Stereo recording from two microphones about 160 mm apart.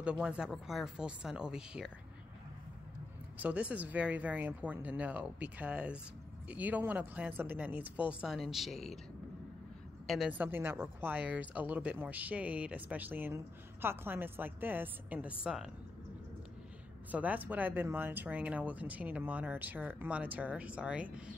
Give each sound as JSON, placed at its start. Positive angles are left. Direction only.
{"t": 0.0, "sound": "speech", "side_deg": -5}
{"t": 3.4, "sound": "a woman's voice", "side_deg": -10}
{"t": 10.0, "sound": "a woman's voice", "side_deg": 0}
{"t": 17.1, "sound": "a woman's voice", "side_deg": -10}